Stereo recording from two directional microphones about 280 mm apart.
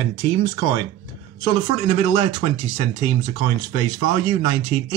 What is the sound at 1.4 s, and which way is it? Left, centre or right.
Speech, centre.